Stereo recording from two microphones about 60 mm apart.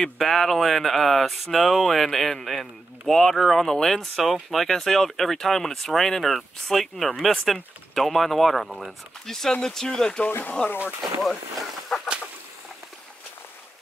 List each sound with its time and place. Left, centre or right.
0.0 s speech: centre
10.2 s speech: left
11.0 s speech: centre